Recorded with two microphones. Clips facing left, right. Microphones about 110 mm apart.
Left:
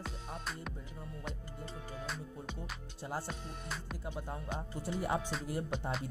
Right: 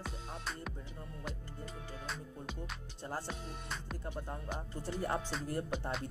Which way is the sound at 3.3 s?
Centre (ahead or behind).